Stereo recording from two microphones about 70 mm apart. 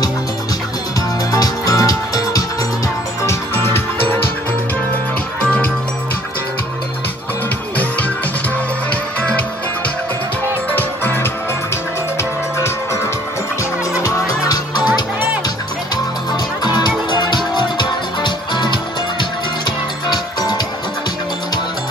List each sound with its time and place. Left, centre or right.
1.3 s music: left
3.3 s music: left
5.4 s music: centre
10.7 s music: left
12.5 s music: left
14.0 s music: left
16.6 s music: left